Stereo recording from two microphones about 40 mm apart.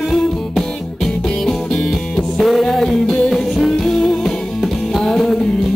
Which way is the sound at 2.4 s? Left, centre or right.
Centre.